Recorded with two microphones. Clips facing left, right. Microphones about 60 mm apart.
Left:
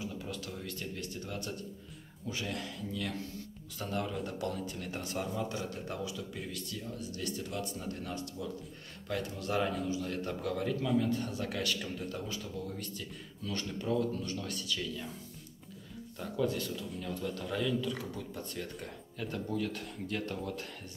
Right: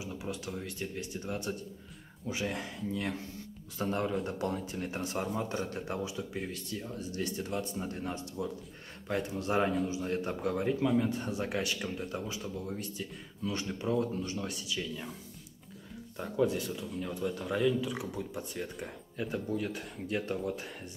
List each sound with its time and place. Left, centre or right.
0.0 s speech: centre
16.2 s speech: centre